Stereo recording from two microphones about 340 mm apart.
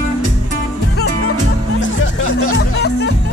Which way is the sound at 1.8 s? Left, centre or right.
Left.